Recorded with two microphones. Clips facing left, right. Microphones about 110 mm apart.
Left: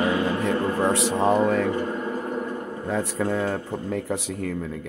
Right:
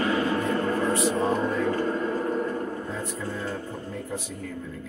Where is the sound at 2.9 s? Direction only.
80° left.